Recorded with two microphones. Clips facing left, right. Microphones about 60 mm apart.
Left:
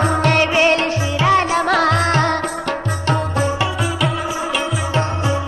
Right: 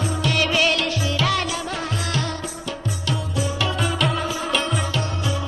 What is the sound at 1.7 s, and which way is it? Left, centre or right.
Music, left.